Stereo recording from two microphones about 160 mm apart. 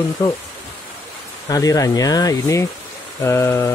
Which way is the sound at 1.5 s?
20° left (ahead or behind).